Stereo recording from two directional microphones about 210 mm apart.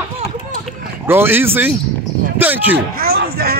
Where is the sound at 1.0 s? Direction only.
10° right (ahead or behind).